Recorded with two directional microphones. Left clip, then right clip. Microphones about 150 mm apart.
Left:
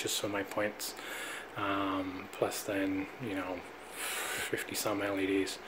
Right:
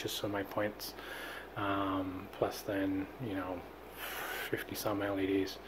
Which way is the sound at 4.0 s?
Centre (ahead or behind).